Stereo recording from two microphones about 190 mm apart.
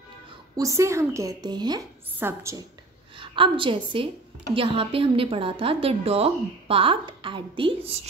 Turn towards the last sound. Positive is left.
turn(degrees=-25)  # may be behind; listen again after turning